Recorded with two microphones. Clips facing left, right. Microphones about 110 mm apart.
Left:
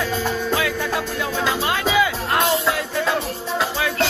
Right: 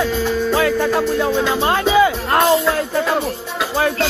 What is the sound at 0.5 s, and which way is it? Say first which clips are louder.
Music: right 7 dB; 45° right (ahead or behind).